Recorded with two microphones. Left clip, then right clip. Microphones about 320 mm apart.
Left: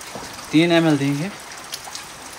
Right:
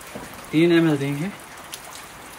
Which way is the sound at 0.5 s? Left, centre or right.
Left.